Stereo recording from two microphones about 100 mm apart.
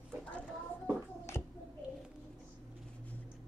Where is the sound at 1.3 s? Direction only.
25° left (ahead or behind).